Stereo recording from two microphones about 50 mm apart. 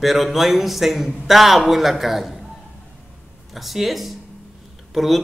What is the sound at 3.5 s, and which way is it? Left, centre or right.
A man's voice, centre.